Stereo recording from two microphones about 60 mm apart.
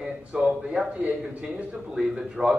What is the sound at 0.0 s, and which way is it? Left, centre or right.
A man's voice, centre.